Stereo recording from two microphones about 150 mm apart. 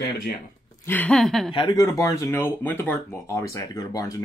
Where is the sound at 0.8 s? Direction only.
10° left (ahead or behind).